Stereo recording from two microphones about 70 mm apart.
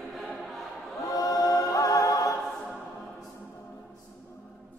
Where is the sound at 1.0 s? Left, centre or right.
Left.